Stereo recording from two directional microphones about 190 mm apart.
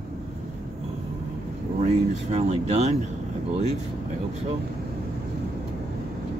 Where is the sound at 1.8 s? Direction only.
35° right (ahead or behind).